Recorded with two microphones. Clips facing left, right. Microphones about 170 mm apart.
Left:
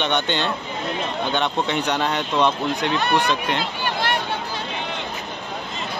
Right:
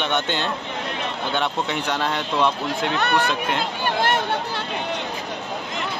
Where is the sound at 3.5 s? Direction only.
45° right (ahead or behind).